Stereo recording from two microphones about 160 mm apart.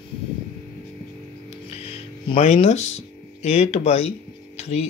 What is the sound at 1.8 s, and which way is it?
Speech, 40° left (ahead or behind).